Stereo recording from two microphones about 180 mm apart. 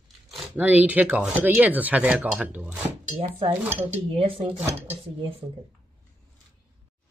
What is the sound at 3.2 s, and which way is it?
Dishes, 30° right (ahead or behind).